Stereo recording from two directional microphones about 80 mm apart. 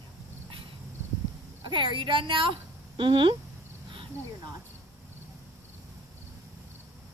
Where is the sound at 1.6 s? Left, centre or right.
Right.